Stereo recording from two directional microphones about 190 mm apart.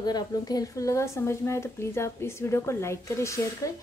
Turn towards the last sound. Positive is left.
turn(degrees=15)  # may be behind; listen again after turning